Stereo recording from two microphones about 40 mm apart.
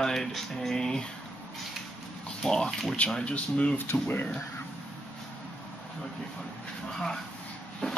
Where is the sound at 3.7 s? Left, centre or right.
Left.